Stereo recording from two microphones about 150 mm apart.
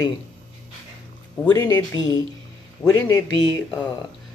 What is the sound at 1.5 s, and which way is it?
Speech, 25° left (ahead or behind).